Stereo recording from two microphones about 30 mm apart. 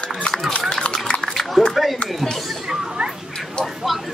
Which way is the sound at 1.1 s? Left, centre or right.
Left.